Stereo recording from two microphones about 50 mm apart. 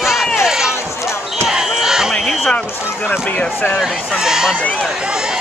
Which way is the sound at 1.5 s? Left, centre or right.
Centre.